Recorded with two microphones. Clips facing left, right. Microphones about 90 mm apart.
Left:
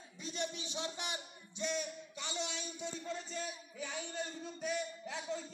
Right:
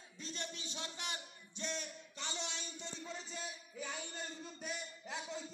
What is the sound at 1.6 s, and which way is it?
A man's voice, 5° left (ahead or behind).